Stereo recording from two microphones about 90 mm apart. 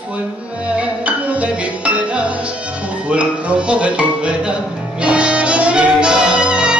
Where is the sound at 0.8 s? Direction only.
15° right (ahead or behind).